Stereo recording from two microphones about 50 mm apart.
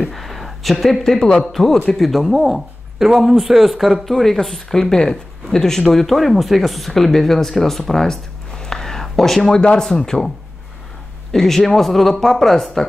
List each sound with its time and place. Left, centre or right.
0.0 s a sound: centre
1.4 s speech: centre
9.6 s speech: centre
11.3 s speech: centre